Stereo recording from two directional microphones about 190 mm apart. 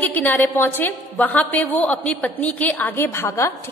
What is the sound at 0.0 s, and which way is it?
A woman's voice, 10° left (ahead or behind).